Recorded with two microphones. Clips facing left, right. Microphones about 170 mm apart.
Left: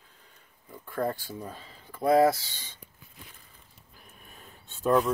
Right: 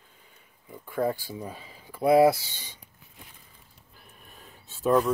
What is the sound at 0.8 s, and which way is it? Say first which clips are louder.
Speech: right 3 dB; 5° right (ahead or behind).